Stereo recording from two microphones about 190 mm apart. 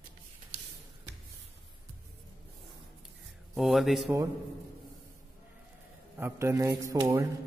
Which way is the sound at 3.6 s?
Centre (ahead or behind).